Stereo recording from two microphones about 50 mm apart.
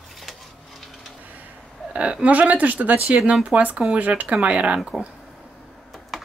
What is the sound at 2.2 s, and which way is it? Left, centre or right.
Speech, right.